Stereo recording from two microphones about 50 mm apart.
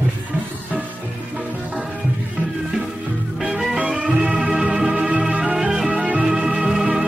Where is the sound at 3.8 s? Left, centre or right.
Centre.